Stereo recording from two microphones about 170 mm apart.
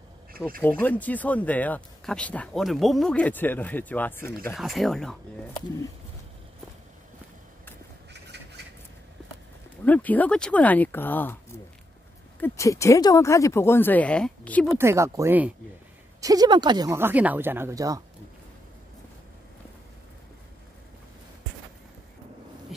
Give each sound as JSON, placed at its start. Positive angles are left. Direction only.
{"t": 0.6, "sound": "speech", "side_deg": 10}
{"t": 4.6, "sound": "speech", "side_deg": 0}
{"t": 9.8, "sound": "speech", "side_deg": 10}
{"t": 12.4, "sound": "speech", "side_deg": 15}
{"t": 14.8, "sound": "speech", "side_deg": -15}
{"t": 16.2, "sound": "speech", "side_deg": -20}